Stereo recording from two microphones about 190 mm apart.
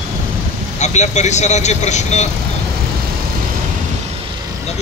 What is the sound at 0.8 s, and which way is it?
Speech, 35° left (ahead or behind).